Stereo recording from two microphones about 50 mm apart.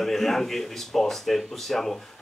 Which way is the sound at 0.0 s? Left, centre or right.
Centre.